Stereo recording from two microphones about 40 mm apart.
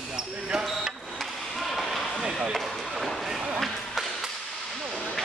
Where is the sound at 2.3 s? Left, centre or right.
Centre.